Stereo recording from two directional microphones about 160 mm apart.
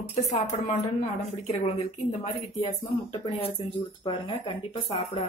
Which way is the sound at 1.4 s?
40° left (ahead or behind).